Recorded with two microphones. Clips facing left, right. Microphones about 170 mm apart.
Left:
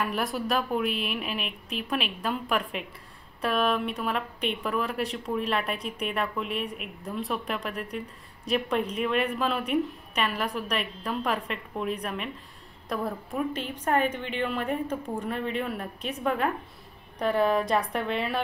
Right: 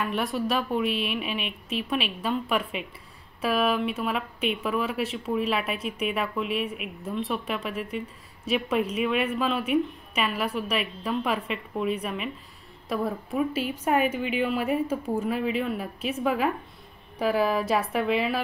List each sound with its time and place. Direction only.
0.0 s speech: centre (ahead or behind)